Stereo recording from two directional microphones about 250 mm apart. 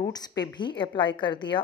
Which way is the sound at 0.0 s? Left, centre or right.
Centre.